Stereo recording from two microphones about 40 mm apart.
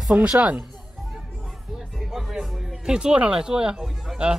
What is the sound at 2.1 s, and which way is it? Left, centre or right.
Music, centre.